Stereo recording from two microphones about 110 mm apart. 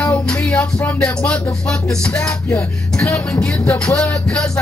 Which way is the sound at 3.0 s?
20° left (ahead or behind).